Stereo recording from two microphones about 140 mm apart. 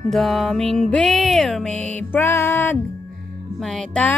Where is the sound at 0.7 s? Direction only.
5° left (ahead or behind).